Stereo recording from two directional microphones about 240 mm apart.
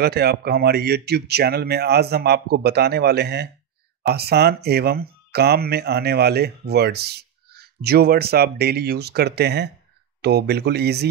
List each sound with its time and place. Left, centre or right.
0.0 s speech: right